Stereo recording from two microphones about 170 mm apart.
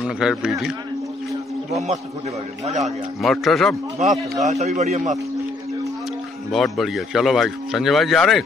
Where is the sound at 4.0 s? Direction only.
45° right (ahead or behind).